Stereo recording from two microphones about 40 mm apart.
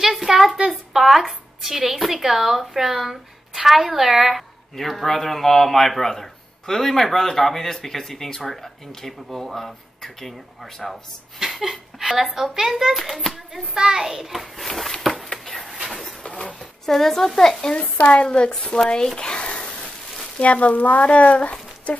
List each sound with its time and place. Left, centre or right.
0.0 s a sound: centre
0.7 s a woman's voice: centre
13.7 s a child's voice: centre
14.7 s a sound: centre
16.8 s a woman's voice: centre
18.0 s speech: left